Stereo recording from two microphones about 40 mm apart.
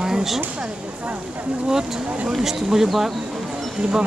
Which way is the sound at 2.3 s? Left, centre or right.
Centre.